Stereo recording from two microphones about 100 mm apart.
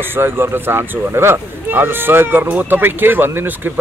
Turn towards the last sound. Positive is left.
turn(degrees=-20)  # may be behind; listen again after turning